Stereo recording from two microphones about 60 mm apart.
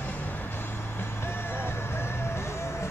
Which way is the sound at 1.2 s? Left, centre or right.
Left.